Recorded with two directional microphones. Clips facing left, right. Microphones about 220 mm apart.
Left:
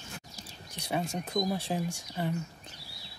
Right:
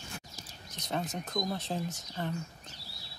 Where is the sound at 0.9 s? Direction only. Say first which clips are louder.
Left 3 dB; 10° left (ahead or behind).